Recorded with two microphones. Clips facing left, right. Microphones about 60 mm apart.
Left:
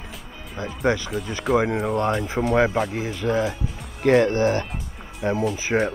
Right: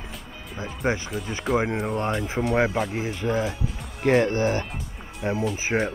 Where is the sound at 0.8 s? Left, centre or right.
Left.